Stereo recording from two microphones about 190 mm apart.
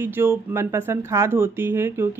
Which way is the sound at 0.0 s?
10° right (ahead or behind).